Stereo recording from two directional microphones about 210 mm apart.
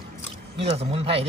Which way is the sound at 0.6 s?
30° right (ahead or behind).